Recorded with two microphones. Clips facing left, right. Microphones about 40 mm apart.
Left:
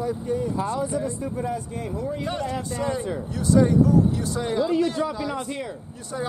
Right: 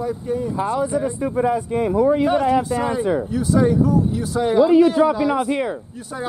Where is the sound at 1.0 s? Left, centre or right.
Right.